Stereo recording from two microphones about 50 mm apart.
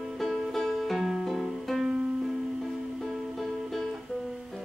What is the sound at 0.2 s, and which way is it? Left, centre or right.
Music, centre.